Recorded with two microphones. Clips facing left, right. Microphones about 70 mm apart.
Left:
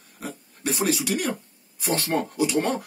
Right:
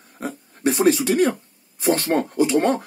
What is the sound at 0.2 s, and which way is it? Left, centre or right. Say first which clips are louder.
Speech: right 8 dB; right.